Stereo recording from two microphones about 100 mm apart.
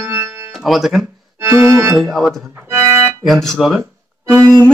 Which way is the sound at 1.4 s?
25° right (ahead or behind).